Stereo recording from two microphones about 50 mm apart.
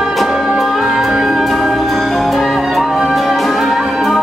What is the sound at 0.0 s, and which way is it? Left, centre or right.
Music, centre.